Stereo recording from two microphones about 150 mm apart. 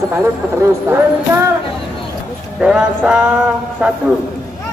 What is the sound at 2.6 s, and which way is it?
Speech, 10° right (ahead or behind).